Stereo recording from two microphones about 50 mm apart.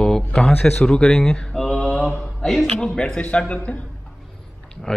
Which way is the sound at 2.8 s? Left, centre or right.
Centre.